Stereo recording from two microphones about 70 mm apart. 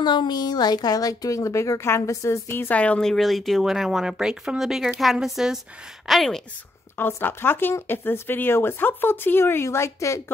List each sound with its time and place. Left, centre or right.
0.0 s a woman's voice: left
2.7 s speech: centre
3.1 s speech: centre
7.0 s speech: left